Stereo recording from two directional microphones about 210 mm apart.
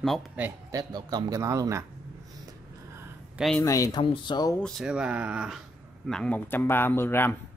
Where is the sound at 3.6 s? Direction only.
15° left (ahead or behind).